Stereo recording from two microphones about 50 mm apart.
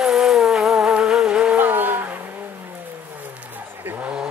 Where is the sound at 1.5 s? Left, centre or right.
Right.